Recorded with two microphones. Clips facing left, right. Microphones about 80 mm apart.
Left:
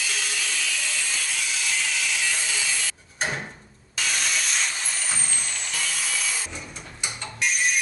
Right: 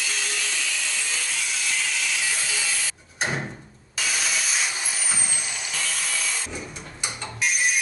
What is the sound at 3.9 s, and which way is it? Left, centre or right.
Vehicle, centre.